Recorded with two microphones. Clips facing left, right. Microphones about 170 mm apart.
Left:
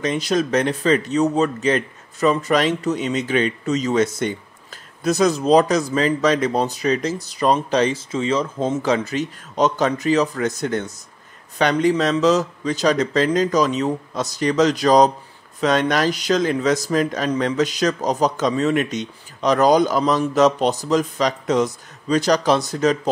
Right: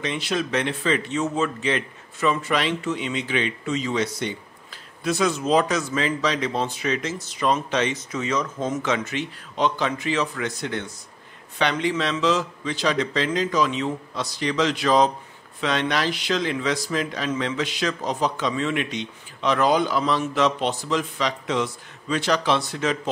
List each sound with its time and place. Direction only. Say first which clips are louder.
0.0 s a man's voice: left 6 dB; 40° left (ahead or behind)